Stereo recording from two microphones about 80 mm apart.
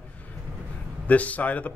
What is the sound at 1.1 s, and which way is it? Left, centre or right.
Speech, centre.